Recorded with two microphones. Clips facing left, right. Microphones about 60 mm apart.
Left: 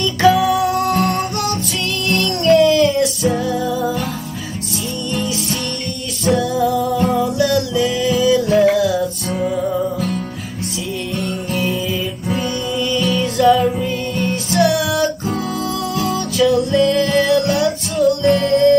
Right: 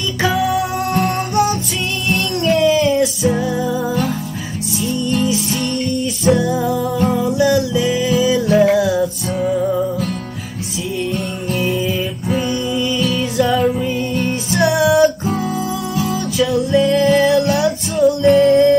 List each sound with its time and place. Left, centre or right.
0.9 s music: centre
6.4 s music: centre
8.7 s music: right
9.3 s music: centre
12.3 s music: centre